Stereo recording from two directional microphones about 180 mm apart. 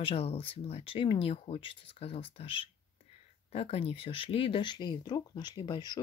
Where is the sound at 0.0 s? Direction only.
30° left (ahead or behind).